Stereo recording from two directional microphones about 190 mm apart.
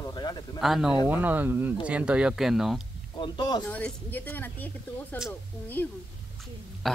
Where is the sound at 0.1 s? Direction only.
20° left (ahead or behind).